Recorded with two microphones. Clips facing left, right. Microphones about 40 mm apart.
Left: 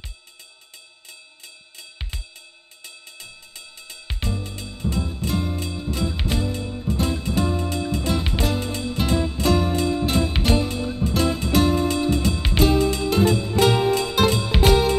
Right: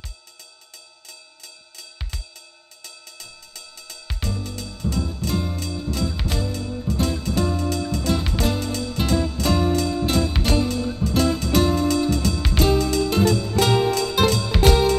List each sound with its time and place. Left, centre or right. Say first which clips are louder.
1.8 s music: left 1 dB; left
5.3 s music: left 1 dB; centre
5.8 s music: right 2 dB; centre
9.3 s music: left 1 dB; centre
9.7 s music: right 1 dB; centre
11.9 s music: right 1 dB; left